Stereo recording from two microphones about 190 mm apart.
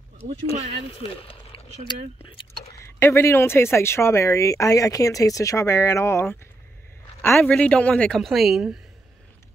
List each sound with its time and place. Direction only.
0.9 s speech: 30° left (ahead or behind)
2.8 s speech: 15° left (ahead or behind); by 8.7 s centre (ahead or behind)